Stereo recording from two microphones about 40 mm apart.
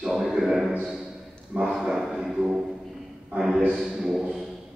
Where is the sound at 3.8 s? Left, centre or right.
Centre.